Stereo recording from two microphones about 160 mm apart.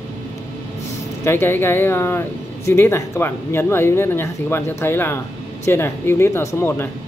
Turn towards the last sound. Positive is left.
turn(degrees=15)  # may be behind; listen again after turning